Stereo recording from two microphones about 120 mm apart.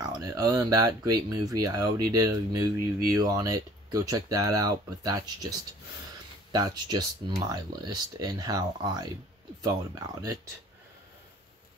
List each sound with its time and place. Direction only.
0.0 s speech: 30° right (ahead or behind)
6.5 s speech: 35° right (ahead or behind)